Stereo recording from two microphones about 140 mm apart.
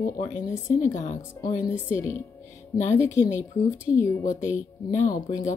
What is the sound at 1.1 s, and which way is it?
Speech, 30° left (ahead or behind).